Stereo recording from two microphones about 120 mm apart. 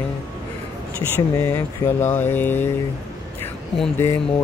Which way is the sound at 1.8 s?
15° left (ahead or behind).